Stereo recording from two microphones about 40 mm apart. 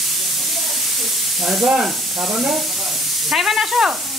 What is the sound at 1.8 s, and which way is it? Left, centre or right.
Sizzle, centre.